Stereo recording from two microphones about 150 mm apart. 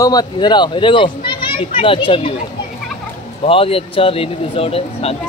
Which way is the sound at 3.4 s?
40° left (ahead or behind).